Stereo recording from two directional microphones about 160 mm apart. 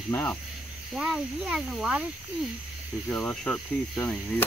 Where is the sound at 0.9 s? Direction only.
Centre (ahead or behind).